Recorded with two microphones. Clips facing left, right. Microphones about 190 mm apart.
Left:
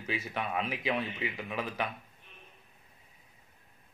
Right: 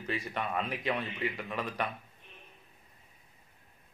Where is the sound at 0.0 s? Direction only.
5° left (ahead or behind).